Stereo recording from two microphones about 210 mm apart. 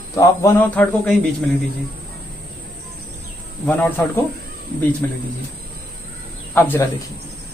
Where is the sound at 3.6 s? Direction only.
10° left (ahead or behind).